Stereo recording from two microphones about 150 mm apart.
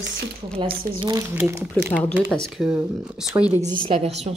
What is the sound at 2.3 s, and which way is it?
Speech, centre (ahead or behind).